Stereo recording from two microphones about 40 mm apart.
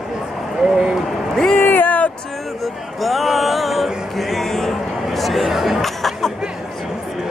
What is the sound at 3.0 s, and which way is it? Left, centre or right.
Music, centre.